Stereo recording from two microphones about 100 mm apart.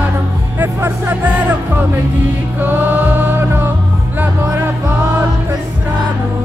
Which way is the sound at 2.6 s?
20° right (ahead or behind).